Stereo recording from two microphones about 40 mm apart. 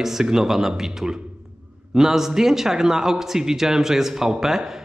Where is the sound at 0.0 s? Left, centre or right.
Centre.